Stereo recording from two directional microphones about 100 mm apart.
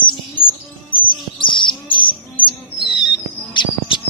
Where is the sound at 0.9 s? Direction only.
55° left (ahead or behind).